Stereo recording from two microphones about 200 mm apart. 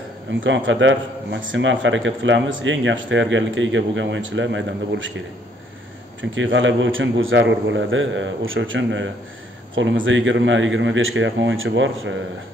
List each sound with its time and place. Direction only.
0.4 s a man's voice: 70° right (ahead or behind)
6.3 s a man's voice: 70° right (ahead or behind)